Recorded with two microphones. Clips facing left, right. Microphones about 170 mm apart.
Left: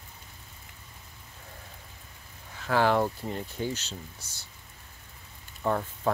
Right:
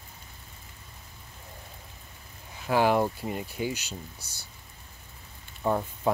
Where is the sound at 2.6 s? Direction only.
15° right (ahead or behind).